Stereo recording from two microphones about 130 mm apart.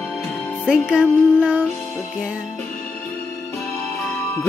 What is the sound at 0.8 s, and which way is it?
Music, 10° right (ahead or behind).